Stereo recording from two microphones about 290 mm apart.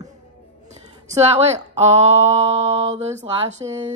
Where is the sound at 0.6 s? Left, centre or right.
Right.